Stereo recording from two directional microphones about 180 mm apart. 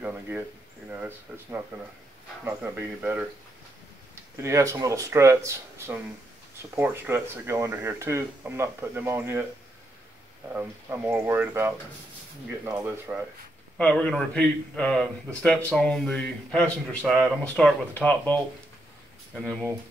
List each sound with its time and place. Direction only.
0.0 s speech: 10° right (ahead or behind)
10.5 s speech: 10° right (ahead or behind)
13.7 s a man's voice: 5° left (ahead or behind)